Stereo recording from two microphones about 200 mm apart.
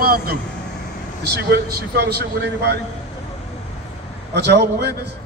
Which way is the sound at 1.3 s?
55° right (ahead or behind).